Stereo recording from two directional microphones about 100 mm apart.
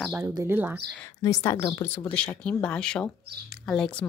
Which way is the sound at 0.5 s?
20° right (ahead or behind).